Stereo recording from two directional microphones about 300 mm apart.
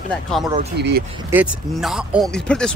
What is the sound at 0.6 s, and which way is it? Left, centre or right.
Speech, right.